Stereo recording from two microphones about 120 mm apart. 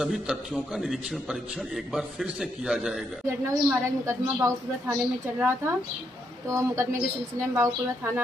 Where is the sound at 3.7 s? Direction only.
25° right (ahead or behind).